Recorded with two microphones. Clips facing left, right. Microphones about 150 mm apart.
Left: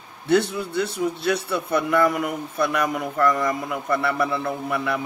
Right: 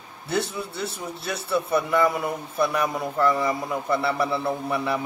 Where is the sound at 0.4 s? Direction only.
5° right (ahead or behind).